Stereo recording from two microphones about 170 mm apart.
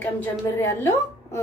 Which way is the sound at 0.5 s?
15° left (ahead or behind).